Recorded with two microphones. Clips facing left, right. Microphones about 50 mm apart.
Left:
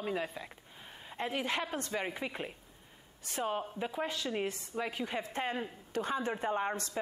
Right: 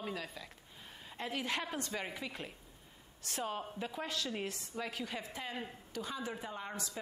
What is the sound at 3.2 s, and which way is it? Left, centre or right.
Speech, centre.